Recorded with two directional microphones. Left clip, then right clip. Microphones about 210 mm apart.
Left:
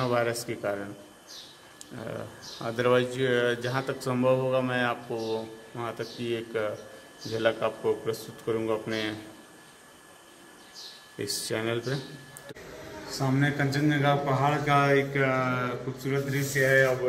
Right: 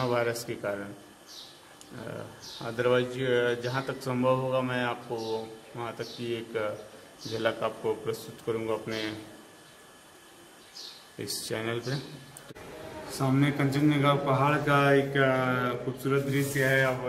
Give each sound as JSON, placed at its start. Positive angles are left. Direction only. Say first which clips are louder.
{"t": 0.0, "sound": "speech", "louder": "left 1 dB", "side_deg": 15}
{"t": 2.6, "sound": "a man's voice", "louder": "left 2 dB", "side_deg": 20}
{"t": 11.1, "sound": "speech", "louder": "left 3 dB", "side_deg": 15}
{"t": 13.2, "sound": "a man's voice", "louder": "even", "side_deg": 0}